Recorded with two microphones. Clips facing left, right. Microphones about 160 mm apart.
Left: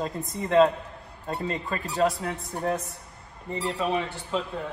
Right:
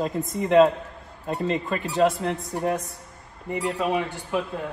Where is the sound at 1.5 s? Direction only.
20° right (ahead or behind).